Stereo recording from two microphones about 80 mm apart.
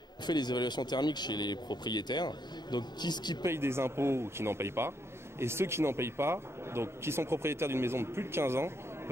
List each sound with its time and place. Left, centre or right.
0.3 s speech: left
3.4 s a man's voice: right